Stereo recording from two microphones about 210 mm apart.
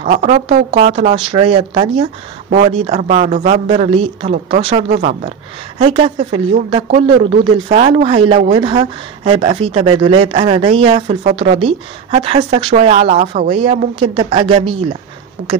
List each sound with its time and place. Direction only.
0.0 s speech: 35° right (ahead or behind)